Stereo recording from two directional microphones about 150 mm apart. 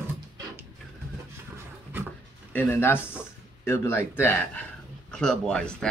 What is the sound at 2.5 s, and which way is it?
A man's voice, 15° left (ahead or behind).